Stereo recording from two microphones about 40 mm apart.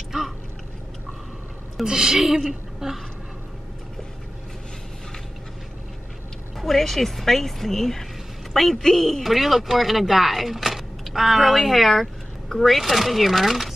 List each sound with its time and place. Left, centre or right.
1.9 s a woman's voice: centre
6.6 s a woman's voice: centre
9.2 s speech: centre